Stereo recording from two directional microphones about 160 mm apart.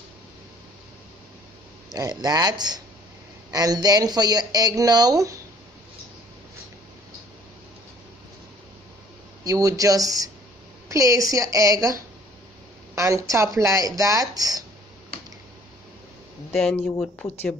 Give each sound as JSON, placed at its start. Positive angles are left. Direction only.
{"t": 2.0, "sound": "speech", "side_deg": -25}
{"t": 9.4, "sound": "speech", "side_deg": -20}
{"t": 12.9, "sound": "speech", "side_deg": -20}
{"t": 16.5, "sound": "speech", "side_deg": 5}